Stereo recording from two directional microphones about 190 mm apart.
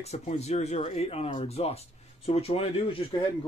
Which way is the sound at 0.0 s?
35° left (ahead or behind).